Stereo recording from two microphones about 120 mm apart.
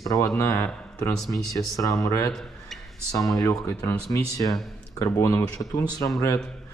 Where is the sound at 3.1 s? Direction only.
30° left (ahead or behind).